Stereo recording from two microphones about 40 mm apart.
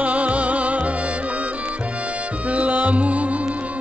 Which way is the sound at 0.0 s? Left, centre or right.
Right.